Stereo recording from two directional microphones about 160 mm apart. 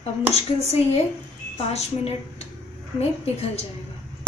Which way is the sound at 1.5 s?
40° left (ahead or behind).